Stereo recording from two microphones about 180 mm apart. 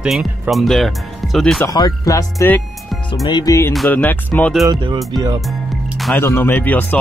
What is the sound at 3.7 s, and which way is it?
Speech, 5° left (ahead or behind).